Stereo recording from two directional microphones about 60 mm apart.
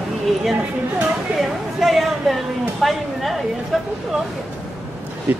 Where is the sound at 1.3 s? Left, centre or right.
Centre.